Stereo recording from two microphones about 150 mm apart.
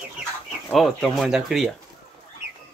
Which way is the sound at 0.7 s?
Centre (ahead or behind).